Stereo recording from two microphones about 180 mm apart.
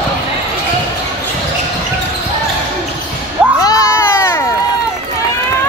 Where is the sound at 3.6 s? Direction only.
20° left (ahead or behind).